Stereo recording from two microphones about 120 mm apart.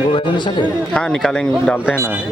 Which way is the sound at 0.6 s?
5° left (ahead or behind).